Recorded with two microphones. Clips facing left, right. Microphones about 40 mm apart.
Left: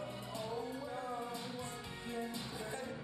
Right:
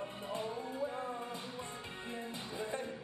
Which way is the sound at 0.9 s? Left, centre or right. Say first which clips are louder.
Right 1 dB; right.